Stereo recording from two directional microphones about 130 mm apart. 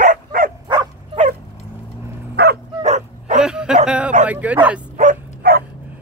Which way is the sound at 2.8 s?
65° right (ahead or behind).